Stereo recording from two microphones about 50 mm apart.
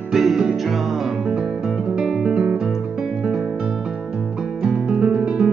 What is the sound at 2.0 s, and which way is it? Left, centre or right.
Guitar, centre.